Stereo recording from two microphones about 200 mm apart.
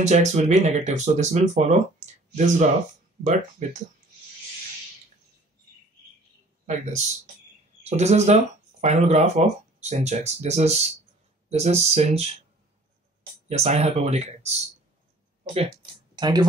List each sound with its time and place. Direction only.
0.0 s speech: 35° right (ahead or behind)
6.6 s speech: 35° right (ahead or behind)
13.5 s speech: 35° right (ahead or behind)